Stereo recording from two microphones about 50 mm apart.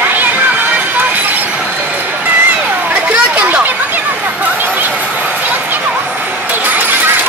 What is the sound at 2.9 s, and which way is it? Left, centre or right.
Chatter, right.